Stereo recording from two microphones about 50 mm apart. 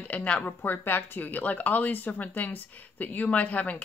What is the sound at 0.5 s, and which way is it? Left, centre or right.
Speech, left.